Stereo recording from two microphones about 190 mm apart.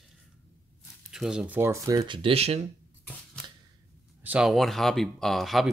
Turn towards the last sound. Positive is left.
turn(degrees=0)  # may be behind; listen again after turning